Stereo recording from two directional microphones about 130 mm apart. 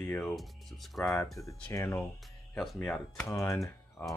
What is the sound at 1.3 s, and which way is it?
Speech, 25° left (ahead or behind).